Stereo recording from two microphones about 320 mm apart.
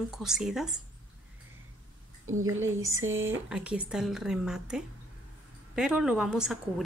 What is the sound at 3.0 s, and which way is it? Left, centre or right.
Speech, right.